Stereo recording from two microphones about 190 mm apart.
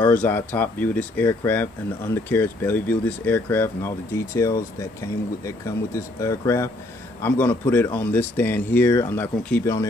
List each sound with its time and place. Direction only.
0.0 s speech: 10° left (ahead or behind)
5.9 s speech: 15° left (ahead or behind)